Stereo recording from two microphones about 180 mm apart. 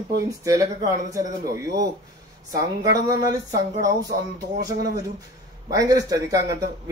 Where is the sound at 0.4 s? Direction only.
20° right (ahead or behind).